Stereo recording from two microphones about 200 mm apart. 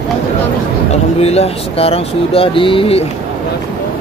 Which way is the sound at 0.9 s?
30° left (ahead or behind).